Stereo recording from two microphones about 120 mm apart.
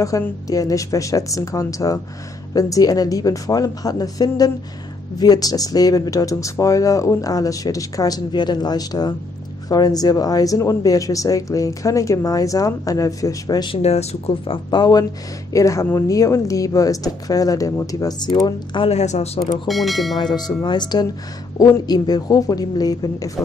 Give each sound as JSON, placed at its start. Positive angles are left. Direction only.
{"t": 0.0, "sound": "speech", "side_deg": 30}
{"t": 13.8, "sound": "speech", "side_deg": 60}
{"t": 14.7, "sound": "speech", "side_deg": 35}
{"t": 18.9, "sound": "speech", "side_deg": 65}
{"t": 19.7, "sound": "speech", "side_deg": 0}
{"t": 20.2, "sound": "speech", "side_deg": 35}